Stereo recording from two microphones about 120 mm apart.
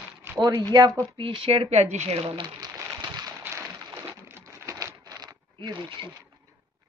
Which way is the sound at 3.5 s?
25° right (ahead or behind).